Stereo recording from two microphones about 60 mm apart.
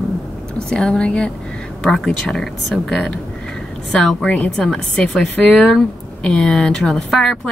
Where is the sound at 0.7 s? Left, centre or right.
Centre.